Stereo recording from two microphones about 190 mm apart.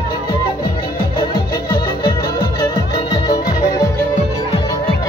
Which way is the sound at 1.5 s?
20° left (ahead or behind).